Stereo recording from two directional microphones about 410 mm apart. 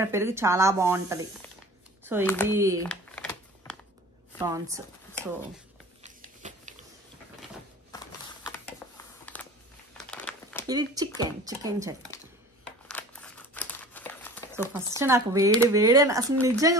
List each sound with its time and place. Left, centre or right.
0.0 s speech: centre
2.8 s a sound: centre
4.4 s speech: centre
6.2 s biting: centre
8.5 s a sound: centre
9.9 s crumpling: centre
10.7 s speech: centre
12.8 s crumpling: centre
15.0 s speech: centre